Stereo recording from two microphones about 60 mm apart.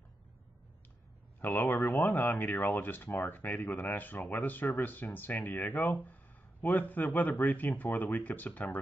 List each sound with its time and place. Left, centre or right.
1.4 s speech: left